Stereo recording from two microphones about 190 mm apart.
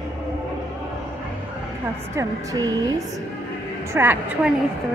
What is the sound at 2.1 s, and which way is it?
Speech, 20° right (ahead or behind).